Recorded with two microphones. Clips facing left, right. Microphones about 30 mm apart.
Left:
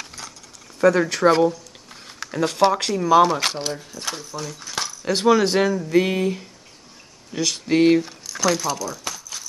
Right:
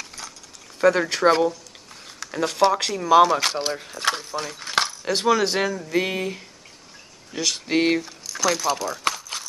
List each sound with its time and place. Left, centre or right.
0.1 s keys jangling: centre
0.7 s speech: centre
2.3 s speech: centre
3.7 s speech: right
5.0 s speech: centre
8.3 s keys jangling: centre
8.7 s a sound: right